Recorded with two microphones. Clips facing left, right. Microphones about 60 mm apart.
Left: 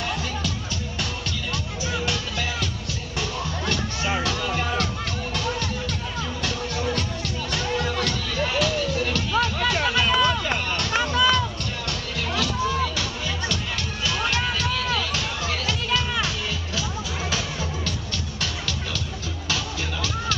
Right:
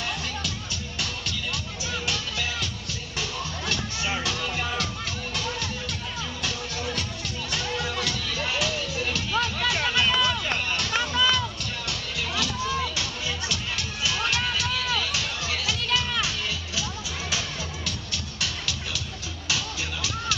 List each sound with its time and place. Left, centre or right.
2.0 s music: centre
14.0 s music: centre
19.5 s music: centre